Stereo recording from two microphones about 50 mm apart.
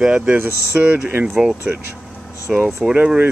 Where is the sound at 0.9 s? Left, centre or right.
Right.